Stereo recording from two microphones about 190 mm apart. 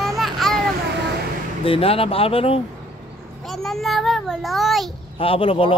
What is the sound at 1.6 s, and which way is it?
Speech, 30° left (ahead or behind).